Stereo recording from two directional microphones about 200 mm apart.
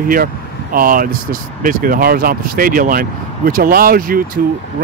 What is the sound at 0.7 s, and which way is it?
Speech, 45° right (ahead or behind).